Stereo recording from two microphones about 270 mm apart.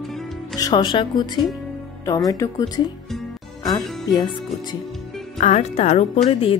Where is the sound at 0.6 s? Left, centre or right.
Centre.